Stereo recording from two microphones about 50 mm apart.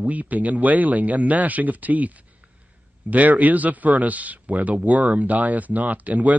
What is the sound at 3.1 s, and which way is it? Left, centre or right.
Speech, right.